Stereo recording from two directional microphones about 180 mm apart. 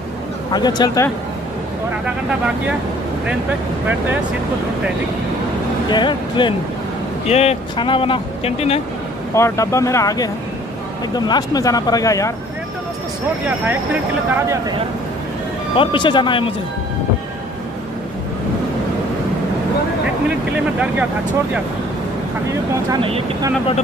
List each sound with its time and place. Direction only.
0.5 s speech: 25° left (ahead or behind)
5.9 s speech: 25° left (ahead or behind)
7.2 s speech: 35° left (ahead or behind)
9.3 s speech: 15° left (ahead or behind)
15.7 s speech: 30° left (ahead or behind)
22.8 s speech: 30° right (ahead or behind)